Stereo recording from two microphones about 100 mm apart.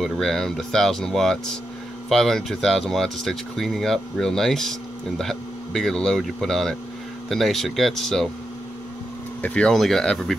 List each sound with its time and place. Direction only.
0.0 s speech: 5° left (ahead or behind)
9.4 s speech: 10° left (ahead or behind)